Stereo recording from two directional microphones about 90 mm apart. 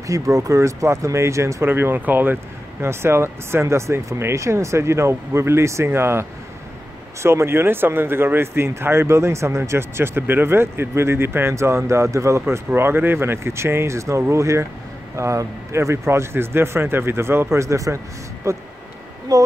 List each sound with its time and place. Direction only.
0.0 s speech: 35° right (ahead or behind)